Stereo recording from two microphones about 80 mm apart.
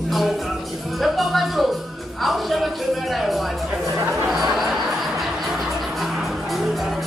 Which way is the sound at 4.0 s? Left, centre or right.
Right.